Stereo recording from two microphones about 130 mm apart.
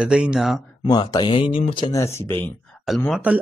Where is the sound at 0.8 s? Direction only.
30° left (ahead or behind).